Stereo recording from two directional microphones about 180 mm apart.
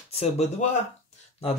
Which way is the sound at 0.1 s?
35° left (ahead or behind).